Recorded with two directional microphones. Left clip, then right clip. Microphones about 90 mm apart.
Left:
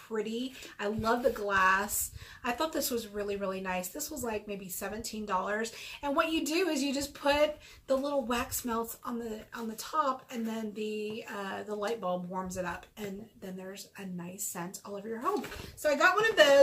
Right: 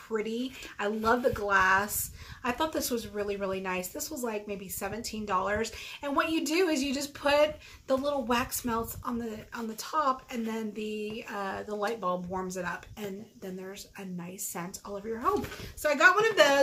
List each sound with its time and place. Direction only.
0.1 s a woman's voice: 35° right (ahead or behind)
14.5 s a woman's voice: 25° right (ahead or behind)